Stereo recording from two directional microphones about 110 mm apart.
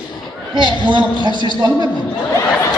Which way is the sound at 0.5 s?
45° right (ahead or behind).